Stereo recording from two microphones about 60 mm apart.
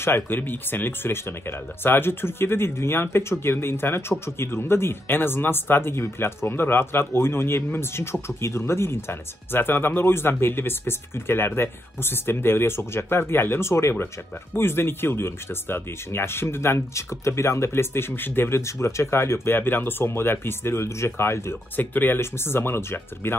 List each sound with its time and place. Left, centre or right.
0.0 s speech: left
18.6 s speech: left